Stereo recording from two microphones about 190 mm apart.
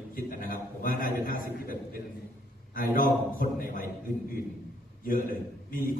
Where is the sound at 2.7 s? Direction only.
45° left (ahead or behind).